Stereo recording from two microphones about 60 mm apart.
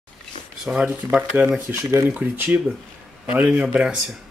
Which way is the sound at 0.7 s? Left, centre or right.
Centre.